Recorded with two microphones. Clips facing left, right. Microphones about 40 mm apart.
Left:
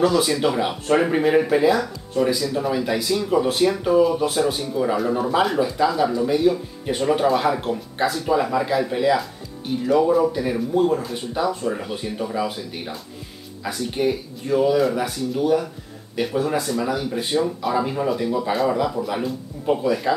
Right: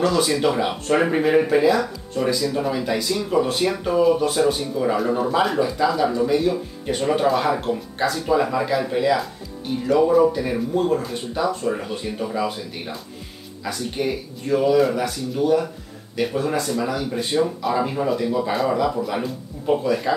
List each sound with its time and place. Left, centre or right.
0.0 s speech: centre